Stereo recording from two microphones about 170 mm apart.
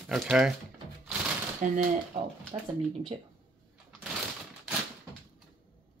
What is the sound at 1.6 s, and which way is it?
Speech, 55° right (ahead or behind).